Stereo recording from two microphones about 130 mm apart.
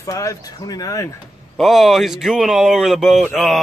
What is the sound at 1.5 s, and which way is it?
Speech, centre (ahead or behind).